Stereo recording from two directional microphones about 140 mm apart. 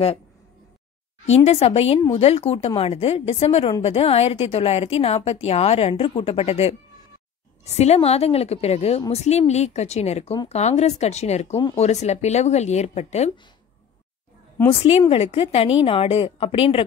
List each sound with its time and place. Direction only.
1.3 s a woman's voice: 45° left (ahead or behind)
14.7 s a woman's voice: 40° left (ahead or behind)